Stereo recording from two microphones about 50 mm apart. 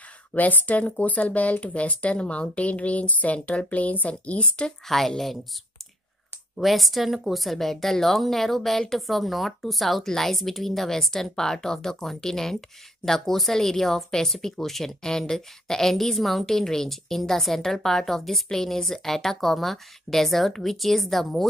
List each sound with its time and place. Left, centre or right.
0.3 s speech: left
4.8 s a woman's voice: centre
6.6 s a woman's voice: centre